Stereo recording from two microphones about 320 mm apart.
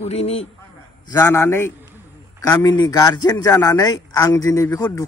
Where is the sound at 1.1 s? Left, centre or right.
Centre.